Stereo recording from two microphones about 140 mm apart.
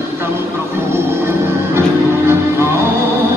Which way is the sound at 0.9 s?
15° right (ahead or behind).